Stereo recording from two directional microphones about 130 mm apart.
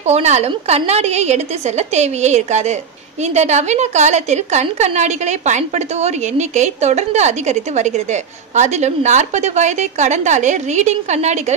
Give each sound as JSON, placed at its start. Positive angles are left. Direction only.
{"t": 0.0, "sound": "a woman's voice", "side_deg": -60}